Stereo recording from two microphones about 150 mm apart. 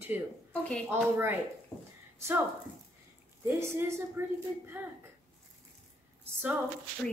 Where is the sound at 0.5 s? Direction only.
10° left (ahead or behind).